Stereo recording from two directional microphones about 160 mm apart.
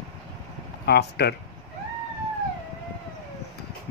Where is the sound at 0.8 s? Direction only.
90° left.